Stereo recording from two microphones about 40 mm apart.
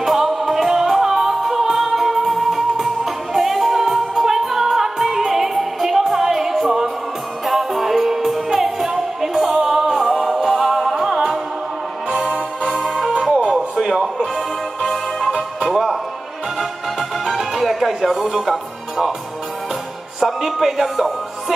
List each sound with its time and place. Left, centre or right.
0.0 s music: centre
12.3 s music: right
12.7 s music: centre
13.1 s music: right
14.2 s music: centre
17.2 s music: centre
20.2 s music: centre